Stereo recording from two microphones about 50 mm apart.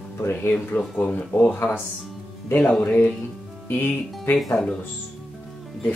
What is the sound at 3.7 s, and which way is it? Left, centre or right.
Speech, left.